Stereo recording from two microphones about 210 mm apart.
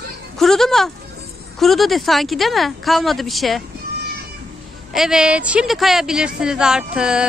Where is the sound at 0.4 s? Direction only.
Centre (ahead or behind).